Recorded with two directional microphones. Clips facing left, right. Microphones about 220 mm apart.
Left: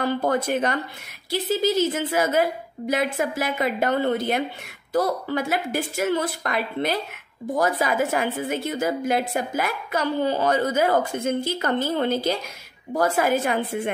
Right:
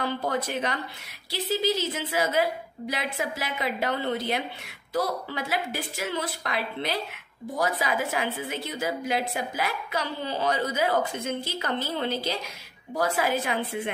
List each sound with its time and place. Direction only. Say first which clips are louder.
0.0 s a woman's voice: left 6 dB; 50° left (ahead or behind)